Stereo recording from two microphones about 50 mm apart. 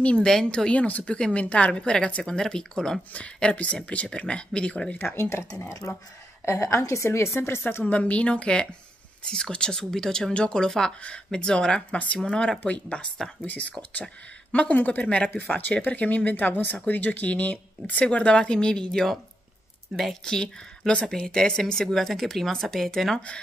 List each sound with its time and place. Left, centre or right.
0.0 s a woman's voice: left
0.3 s a woman's voice: centre
0.7 s a woman's voice: left; by 3.0 s centre
3.1 s a woman's voice: left
5.1 s speech: left
6.4 s a woman's voice: left
7.1 s speech: left
7.8 s a woman's voice: left; by 19.1 s centre
19.9 s speech: centre
20.2 s a woman's voice: centre